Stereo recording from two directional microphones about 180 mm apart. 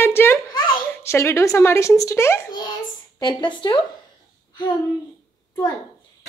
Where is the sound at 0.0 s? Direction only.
15° left (ahead or behind).